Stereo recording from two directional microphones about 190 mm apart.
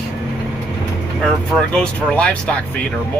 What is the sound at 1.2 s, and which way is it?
Speech, 5° left (ahead or behind).